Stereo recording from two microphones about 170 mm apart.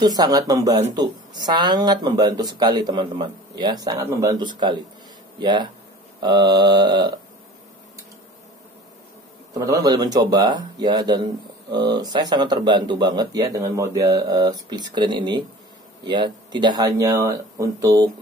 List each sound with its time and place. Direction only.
0.0 s speech: 25° right (ahead or behind)
9.5 s speech: 20° right (ahead or behind)